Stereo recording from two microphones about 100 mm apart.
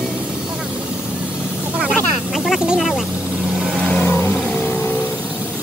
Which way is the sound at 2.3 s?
Centre (ahead or behind).